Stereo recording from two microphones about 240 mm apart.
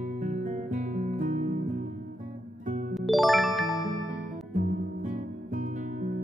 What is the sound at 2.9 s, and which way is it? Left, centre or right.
Music, centre.